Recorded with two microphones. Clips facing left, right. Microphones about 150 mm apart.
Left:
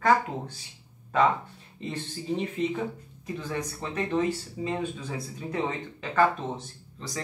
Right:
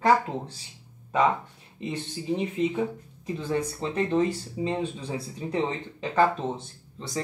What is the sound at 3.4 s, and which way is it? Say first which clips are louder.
Speech: right 6 dB; 30° right (ahead or behind).